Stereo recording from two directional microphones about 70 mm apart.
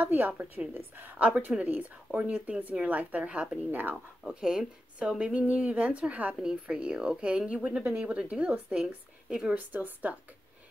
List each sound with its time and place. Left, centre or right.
0.0 s a woman's voice: right
0.3 s speech: centre
0.7 s a woman's voice: right
4.3 s speech: centre
9.8 s a woman's voice: right